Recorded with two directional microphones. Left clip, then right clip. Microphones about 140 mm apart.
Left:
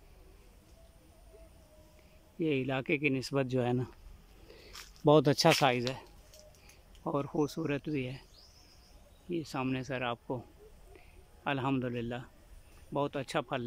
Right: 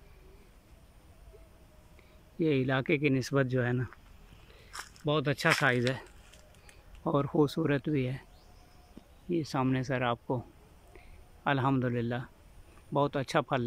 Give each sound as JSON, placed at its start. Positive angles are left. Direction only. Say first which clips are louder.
{"t": 2.3, "sound": "speech", "louder": "right 3 dB", "side_deg": 10}
{"t": 3.3, "sound": "speech", "louder": "right 2 dB", "side_deg": 25}
{"t": 5.0, "sound": "speech", "louder": "left 4 dB", "side_deg": 50}
{"t": 7.0, "sound": "speech", "louder": "right 5 dB", "side_deg": 0}
{"t": 9.3, "sound": "speech", "louder": "right 4 dB", "side_deg": 0}
{"t": 11.4, "sound": "speech", "louder": "right 4 dB", "side_deg": 5}